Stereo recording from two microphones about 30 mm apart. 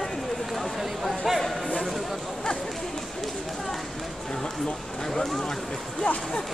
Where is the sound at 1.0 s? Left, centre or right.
Centre.